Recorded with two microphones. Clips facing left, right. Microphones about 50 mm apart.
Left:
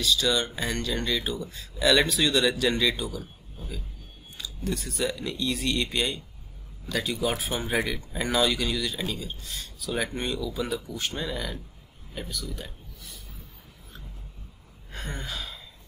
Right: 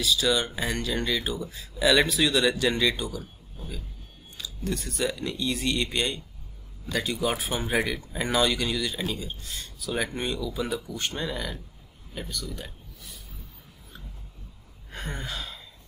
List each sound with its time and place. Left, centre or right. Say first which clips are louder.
0.0 s speech: even; centre
12.1 s a sound: even; centre
14.9 s sigh: right 1 dB; centre